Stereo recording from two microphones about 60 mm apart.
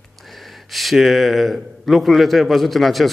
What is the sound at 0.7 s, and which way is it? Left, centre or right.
Speech, centre.